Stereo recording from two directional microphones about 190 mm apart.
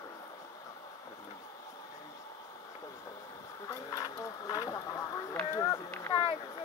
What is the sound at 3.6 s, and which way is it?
Speech, 15° left (ahead or behind).